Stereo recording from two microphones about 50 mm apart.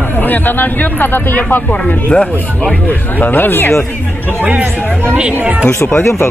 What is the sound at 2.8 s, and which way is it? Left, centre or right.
Speech, left.